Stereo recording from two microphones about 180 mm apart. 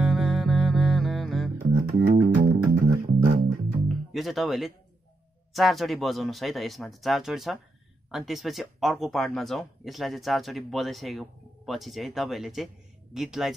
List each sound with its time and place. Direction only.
0.0 s music: centre (ahead or behind)
1.6 s music: 50° right (ahead or behind)
4.1 s speech: centre (ahead or behind)